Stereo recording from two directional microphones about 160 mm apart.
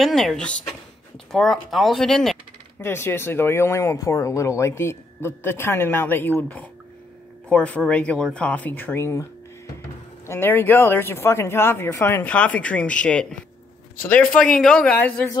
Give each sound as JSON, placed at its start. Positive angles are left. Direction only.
{"t": 0.0, "sound": "speech", "side_deg": 0}
{"t": 2.8, "sound": "speech", "side_deg": 15}